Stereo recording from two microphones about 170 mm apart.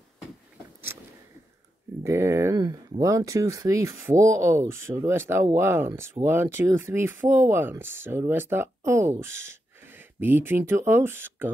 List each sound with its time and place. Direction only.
2.0 s speech: 15° right (ahead or behind)